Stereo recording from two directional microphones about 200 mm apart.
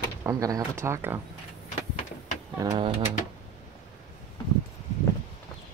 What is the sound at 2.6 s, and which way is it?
Speech, 20° right (ahead or behind).